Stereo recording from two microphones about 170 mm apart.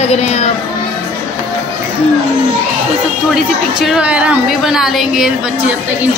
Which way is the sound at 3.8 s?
5° right (ahead or behind).